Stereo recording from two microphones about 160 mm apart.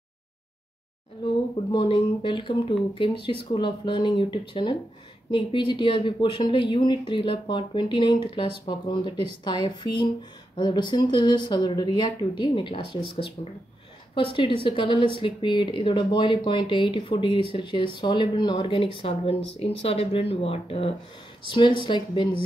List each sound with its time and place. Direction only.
1.7 s speech: 30° left (ahead or behind)